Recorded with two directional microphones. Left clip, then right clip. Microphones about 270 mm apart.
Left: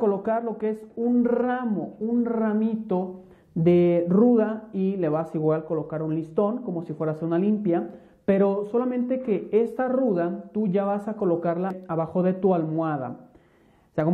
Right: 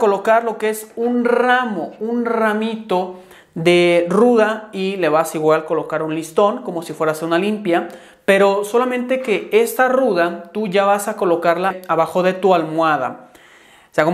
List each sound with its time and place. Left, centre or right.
0.0 s speech: centre